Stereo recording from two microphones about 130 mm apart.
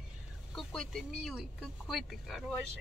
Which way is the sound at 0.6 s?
Centre (ahead or behind).